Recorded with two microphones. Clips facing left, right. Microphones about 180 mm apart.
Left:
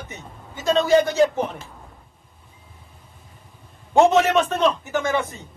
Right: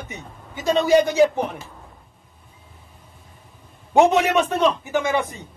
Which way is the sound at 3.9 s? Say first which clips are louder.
Even; 15° right (ahead or behind).